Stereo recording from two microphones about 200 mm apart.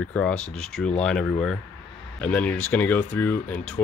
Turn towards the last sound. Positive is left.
turn(degrees=10)  # may be behind; listen again after turning